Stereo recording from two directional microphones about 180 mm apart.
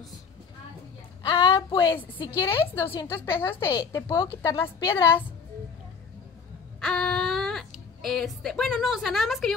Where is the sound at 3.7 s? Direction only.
25° left (ahead or behind).